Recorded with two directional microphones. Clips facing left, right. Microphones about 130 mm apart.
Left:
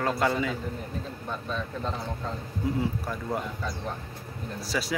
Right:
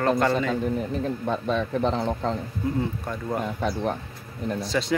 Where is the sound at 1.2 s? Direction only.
90° right.